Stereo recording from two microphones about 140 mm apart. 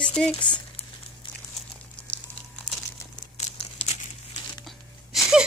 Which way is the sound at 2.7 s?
65° left (ahead or behind).